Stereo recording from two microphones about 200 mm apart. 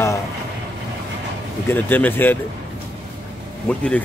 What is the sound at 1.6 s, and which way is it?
Speech, 10° left (ahead or behind).